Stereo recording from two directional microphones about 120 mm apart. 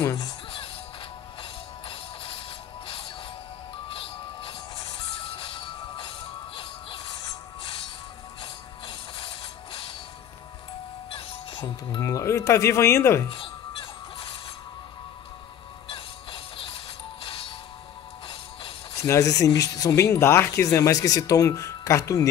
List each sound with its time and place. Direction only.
0.0 s music: 30° left (ahead or behind)
1.4 s music: 45° left (ahead or behind)
11.1 s music: 45° left (ahead or behind)
12.0 s speech: 25° left (ahead or behind)
13.3 s music: 45° left (ahead or behind)
15.9 s music: 45° left (ahead or behind)
18.9 s speech: 25° left (ahead or behind)